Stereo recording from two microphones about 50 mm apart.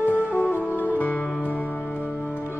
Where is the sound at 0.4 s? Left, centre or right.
Left.